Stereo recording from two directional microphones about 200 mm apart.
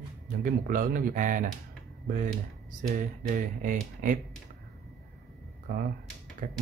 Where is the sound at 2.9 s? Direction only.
40° right (ahead or behind).